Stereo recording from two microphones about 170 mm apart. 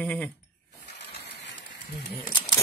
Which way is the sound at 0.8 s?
85° left.